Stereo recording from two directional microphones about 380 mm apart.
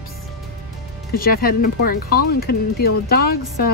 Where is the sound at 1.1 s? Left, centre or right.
Left.